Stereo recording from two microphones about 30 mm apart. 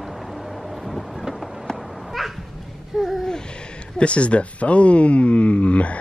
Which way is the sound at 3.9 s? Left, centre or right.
Left.